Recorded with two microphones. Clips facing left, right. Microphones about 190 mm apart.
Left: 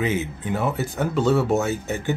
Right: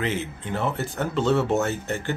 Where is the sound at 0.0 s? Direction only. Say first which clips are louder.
Left 3 dB; 10° left (ahead or behind).